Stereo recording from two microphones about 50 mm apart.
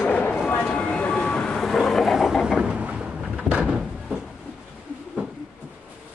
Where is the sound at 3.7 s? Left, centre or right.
Centre.